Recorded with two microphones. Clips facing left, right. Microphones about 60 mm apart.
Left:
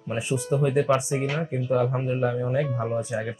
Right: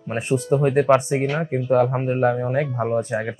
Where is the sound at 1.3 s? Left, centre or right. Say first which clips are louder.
Right 6 dB; right.